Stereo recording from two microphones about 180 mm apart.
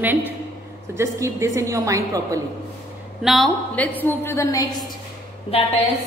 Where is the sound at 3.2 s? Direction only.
Centre (ahead or behind); by 4.9 s 20° left (ahead or behind).